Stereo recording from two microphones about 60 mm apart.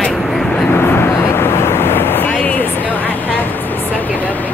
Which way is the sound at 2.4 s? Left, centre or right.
Left.